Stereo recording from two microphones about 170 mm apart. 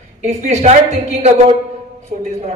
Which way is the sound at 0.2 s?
45° right (ahead or behind).